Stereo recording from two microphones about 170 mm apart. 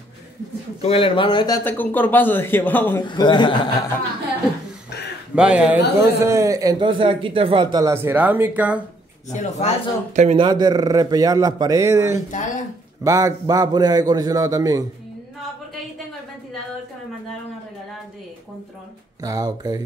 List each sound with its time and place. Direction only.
0.8 s speech: 30° left (ahead or behind)
1.6 s a man's voice: 10° left (ahead or behind)
3.1 s speech: 25° left (ahead or behind)
5.3 s speech: 5° right (ahead or behind)
5.9 s speech: 15° right (ahead or behind)
9.3 s a man's voice: 40° left (ahead or behind)
10.1 s speech: 40° right (ahead or behind)
10.4 s speech: 25° right (ahead or behind)
12.3 s a man's voice: 45° left (ahead or behind)
13.0 s speech: 20° right (ahead or behind)
19.2 s speech: 20° right (ahead or behind)